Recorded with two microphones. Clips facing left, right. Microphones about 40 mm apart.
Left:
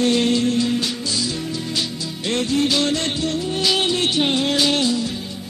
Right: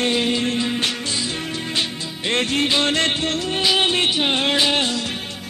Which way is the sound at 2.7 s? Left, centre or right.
Right.